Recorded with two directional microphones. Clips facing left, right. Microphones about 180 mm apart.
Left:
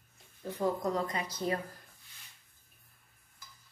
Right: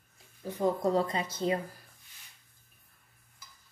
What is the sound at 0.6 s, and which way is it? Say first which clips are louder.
Speech: right 4 dB; 30° right (ahead or behind).